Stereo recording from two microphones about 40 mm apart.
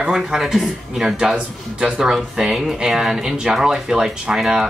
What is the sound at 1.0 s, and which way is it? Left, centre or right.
Speech, centre.